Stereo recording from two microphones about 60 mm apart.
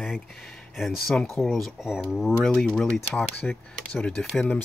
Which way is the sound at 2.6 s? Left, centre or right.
Centre.